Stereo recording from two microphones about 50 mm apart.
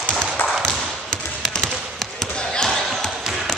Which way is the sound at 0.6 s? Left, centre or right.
Centre.